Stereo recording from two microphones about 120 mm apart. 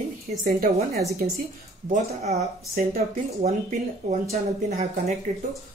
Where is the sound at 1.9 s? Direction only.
90° right.